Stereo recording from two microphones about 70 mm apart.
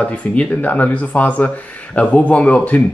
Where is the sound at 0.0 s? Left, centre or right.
Centre.